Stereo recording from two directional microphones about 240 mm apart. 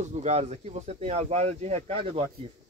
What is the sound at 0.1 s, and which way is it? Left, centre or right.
Speech, right.